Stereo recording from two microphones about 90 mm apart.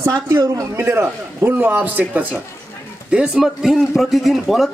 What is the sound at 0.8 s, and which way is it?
A man's voice, 25° right (ahead or behind).